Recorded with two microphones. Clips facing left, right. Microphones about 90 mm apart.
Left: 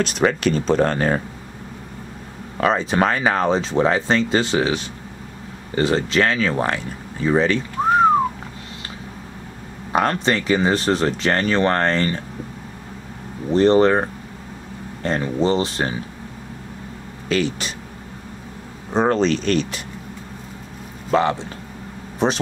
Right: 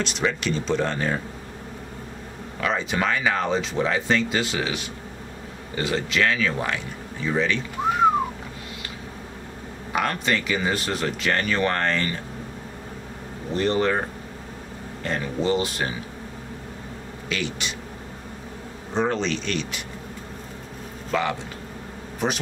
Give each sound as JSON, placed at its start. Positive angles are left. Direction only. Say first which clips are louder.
{"t": 0.0, "sound": "speech", "louder": "left 7 dB", "side_deg": 50}
{"t": 2.5, "sound": "speech", "louder": "left 6 dB", "side_deg": 40}
{"t": 9.9, "sound": "speech", "louder": "left 5 dB", "side_deg": 35}
{"t": 13.6, "sound": "speech", "louder": "left 8 dB", "side_deg": 35}
{"t": 15.0, "sound": "speech", "louder": "left 5 dB", "side_deg": 35}
{"t": 17.3, "sound": "speech", "louder": "left 8 dB", "side_deg": 40}
{"t": 18.9, "sound": "speech", "louder": "left 6 dB", "side_deg": 40}
{"t": 21.1, "sound": "speech", "louder": "left 6 dB", "side_deg": 35}